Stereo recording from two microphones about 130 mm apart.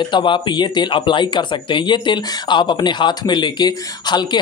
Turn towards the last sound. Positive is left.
turn(degrees=35)  # may be behind; listen again after turning